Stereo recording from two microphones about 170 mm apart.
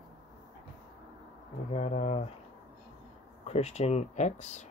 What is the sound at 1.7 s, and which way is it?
Speech, 40° left (ahead or behind).